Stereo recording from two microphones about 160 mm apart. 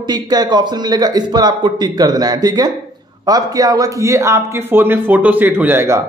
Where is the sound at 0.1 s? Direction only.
25° right (ahead or behind).